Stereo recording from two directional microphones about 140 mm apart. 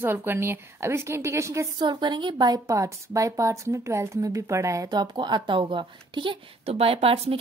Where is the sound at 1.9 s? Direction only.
35° right (ahead or behind).